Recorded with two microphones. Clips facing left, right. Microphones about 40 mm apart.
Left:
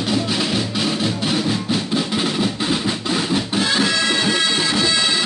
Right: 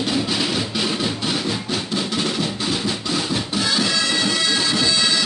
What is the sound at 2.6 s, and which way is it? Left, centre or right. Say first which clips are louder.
Music: left 2 dB; centre.